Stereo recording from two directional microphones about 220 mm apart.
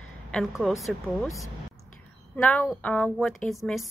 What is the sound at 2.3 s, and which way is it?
A woman's voice, 5° left (ahead or behind).